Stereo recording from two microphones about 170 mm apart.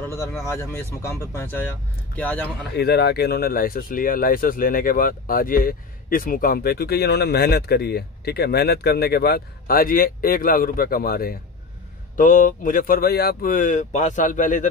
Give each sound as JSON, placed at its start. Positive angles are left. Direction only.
{"t": 0.0, "sound": "a sound", "side_deg": 15}
{"t": 0.5, "sound": "speech", "side_deg": 15}
{"t": 2.7, "sound": "speech", "side_deg": 70}
{"t": 12.2, "sound": "speech", "side_deg": 50}